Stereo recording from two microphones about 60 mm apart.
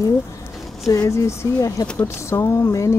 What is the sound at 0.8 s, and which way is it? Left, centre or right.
Speech, left.